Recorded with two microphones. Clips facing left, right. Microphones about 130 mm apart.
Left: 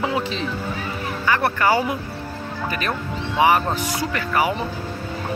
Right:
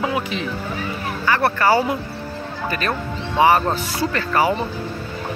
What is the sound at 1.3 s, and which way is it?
Speech, 20° left (ahead or behind).